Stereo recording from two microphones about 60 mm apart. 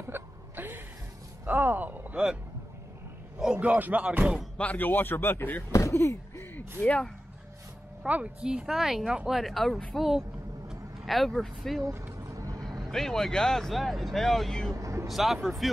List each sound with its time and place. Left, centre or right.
0.0 s hiccup: right
1.4 s a sound: right
3.5 s music: right
4.6 s a man's voice: left
5.7 s speech: left
6.8 s speech: left
8.1 s music: centre
8.6 s speech: centre
9.4 s speech: centre
11.8 s speech: right
12.2 s vehicle: right
12.8 s speech: centre
14.7 s vehicle: right
15.0 s speech: centre